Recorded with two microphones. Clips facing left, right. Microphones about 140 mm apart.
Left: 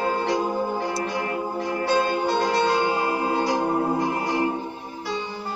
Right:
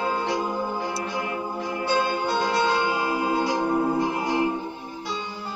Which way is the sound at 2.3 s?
45° left (ahead or behind).